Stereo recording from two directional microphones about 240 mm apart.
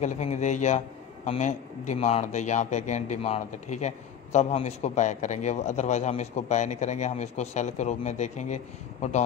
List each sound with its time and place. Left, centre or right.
0.0 s a man's voice: left